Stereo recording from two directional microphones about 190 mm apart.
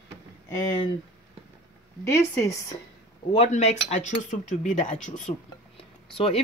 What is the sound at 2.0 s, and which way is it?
Speech, 15° left (ahead or behind).